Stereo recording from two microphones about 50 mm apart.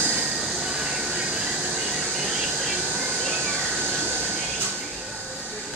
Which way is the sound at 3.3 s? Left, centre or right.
Right.